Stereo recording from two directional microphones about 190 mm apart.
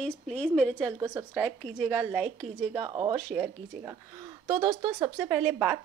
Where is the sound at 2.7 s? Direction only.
20° right (ahead or behind).